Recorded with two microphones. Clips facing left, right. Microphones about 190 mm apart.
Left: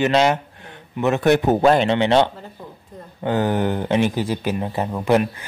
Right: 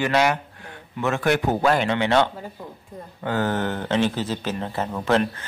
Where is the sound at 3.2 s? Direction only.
15° left (ahead or behind).